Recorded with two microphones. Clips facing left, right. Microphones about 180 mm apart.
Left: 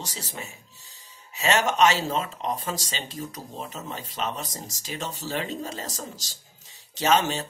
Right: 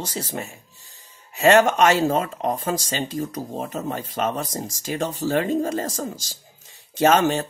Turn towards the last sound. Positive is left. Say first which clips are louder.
# right 5 dB
turn(degrees=-50)  # may be behind; listen again after turning